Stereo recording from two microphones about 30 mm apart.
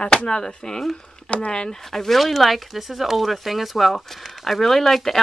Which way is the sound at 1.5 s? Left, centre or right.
Left.